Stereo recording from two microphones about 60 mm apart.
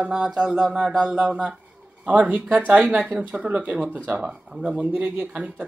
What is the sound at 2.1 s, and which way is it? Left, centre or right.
Speech, right.